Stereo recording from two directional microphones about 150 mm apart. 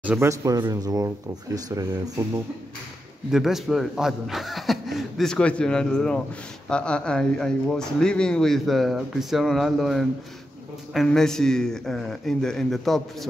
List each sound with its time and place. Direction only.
0.0 s speech: 10° right (ahead or behind)
0.3 s speech: 20° right (ahead or behind)
3.3 s speech: 5° right (ahead or behind)